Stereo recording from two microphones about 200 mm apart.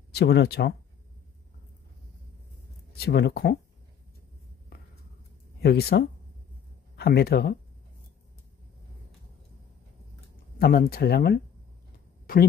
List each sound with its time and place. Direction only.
0.1 s speech: 55° left (ahead or behind)
3.0 s speech: 55° left (ahead or behind)
5.6 s speech: 55° left (ahead or behind)
10.6 s speech: 50° left (ahead or behind)